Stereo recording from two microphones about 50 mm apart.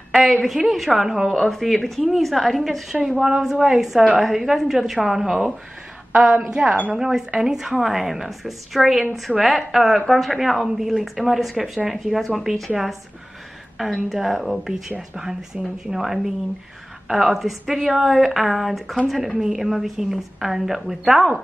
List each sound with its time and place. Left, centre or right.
0.2 s a woman's voice: centre
1.3 s a woman's voice: centre
6.5 s speech: right
6.9 s a woman's voice: centre
14.0 s a woman's voice: centre